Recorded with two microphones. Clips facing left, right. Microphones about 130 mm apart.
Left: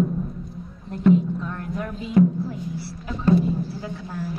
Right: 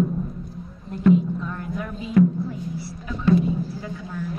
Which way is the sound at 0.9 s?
Centre (ahead or behind).